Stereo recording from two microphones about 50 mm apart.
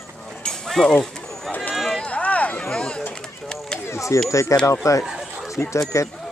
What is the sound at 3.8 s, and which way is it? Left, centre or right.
Speech, left.